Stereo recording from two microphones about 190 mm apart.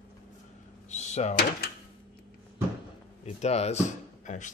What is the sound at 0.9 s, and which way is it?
Speech, 35° left (ahead or behind).